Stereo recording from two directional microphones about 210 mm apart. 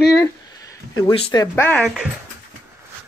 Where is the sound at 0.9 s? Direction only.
20° left (ahead or behind).